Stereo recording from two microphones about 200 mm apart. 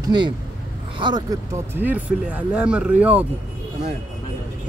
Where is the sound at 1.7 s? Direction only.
10° right (ahead or behind).